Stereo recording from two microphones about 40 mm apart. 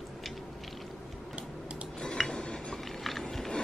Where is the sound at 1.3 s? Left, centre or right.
Right.